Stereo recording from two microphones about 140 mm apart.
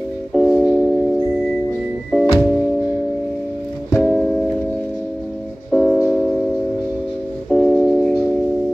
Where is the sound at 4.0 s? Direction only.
Centre (ahead or behind).